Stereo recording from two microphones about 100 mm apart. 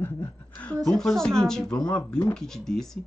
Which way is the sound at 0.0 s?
15° left (ahead or behind).